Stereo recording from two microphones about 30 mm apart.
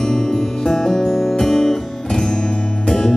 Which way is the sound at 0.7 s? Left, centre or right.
Centre.